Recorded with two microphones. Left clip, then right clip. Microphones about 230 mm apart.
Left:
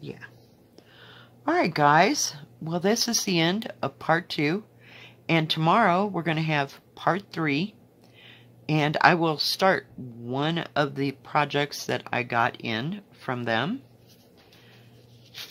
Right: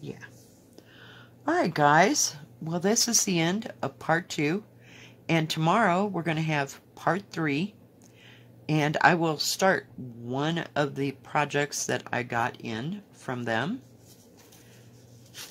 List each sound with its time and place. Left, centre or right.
0.0 s speech: centre